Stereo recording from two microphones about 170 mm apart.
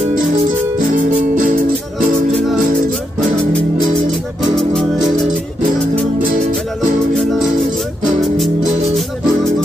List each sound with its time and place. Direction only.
0.0 s music: 45° right (ahead or behind)